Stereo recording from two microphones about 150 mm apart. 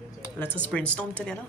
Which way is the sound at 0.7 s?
5° left (ahead or behind).